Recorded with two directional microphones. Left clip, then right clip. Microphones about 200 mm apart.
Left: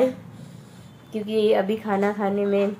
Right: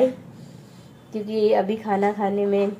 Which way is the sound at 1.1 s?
15° left (ahead or behind).